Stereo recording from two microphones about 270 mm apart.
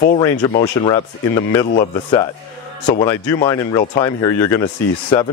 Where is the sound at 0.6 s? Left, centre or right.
Centre.